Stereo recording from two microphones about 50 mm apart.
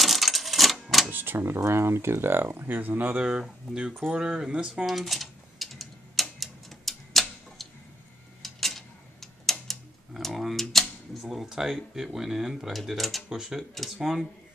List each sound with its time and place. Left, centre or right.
0.0 s cash register: centre
1.1 s a sound: right
1.6 s speech: right
3.2 s speech: centre
4.8 s typing: centre
6.4 s tick-tock: centre
10.1 s speech: centre